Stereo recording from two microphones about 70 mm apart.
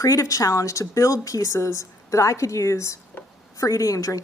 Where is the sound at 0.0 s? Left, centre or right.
Left.